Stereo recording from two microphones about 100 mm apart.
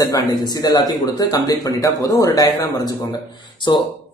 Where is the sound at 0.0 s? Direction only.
40° left (ahead or behind).